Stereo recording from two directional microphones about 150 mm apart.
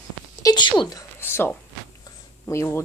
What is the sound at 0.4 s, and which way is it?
Speech, 30° left (ahead or behind).